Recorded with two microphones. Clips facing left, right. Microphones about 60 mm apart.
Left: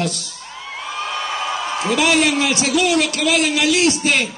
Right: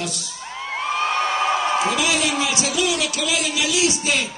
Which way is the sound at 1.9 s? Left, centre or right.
Left.